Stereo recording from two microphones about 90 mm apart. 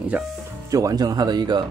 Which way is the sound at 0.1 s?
25° right (ahead or behind).